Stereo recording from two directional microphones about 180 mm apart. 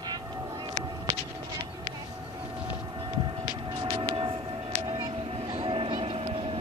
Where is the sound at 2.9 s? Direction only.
25° right (ahead or behind).